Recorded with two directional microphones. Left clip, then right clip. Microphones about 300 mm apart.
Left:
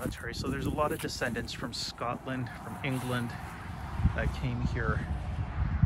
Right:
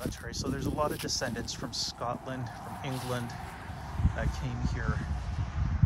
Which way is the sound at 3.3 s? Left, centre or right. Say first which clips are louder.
Even; right.